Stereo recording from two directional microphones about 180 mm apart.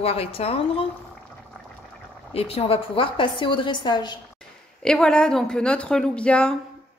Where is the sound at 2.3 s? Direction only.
35° left (ahead or behind).